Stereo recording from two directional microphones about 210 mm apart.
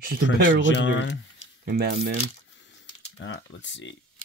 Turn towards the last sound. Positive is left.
turn(degrees=60)  # may be behind; listen again after turning